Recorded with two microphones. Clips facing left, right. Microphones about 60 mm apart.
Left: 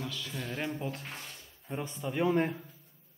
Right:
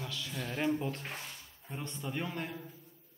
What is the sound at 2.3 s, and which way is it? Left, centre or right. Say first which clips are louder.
Speech: left 11 dB; left.